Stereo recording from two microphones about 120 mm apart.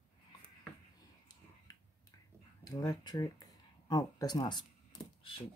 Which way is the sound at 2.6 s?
30° left (ahead or behind).